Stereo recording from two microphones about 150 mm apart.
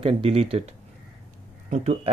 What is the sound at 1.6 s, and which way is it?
Speech, 50° right (ahead or behind).